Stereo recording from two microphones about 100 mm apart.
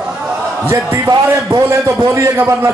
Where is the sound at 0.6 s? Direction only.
25° right (ahead or behind).